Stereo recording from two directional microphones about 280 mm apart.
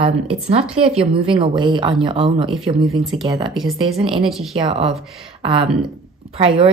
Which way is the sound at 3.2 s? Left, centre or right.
Centre.